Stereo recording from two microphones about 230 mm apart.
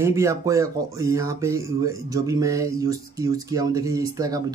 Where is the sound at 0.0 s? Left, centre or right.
Centre.